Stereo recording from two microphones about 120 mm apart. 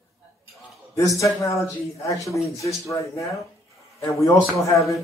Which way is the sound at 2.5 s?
25° left (ahead or behind).